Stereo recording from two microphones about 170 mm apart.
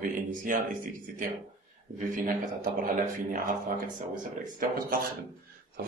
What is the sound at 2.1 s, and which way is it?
Speech, 50° right (ahead or behind).